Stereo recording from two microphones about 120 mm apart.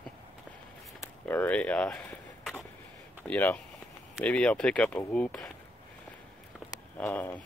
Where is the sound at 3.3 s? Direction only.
15° left (ahead or behind).